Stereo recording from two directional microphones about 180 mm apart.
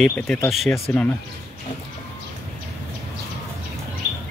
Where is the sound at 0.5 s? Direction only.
Centre (ahead or behind).